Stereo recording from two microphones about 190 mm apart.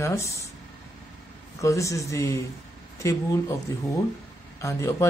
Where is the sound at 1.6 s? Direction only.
15° left (ahead or behind).